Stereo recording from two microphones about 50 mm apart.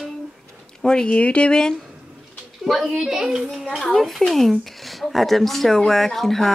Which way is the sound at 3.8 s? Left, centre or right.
Centre.